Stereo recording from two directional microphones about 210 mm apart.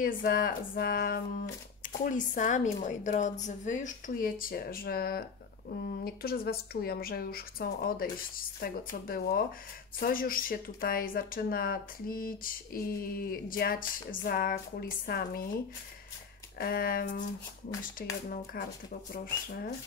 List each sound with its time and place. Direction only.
0.0 s a woman's voice: 40° left (ahead or behind)
16.5 s speech: 45° left (ahead or behind)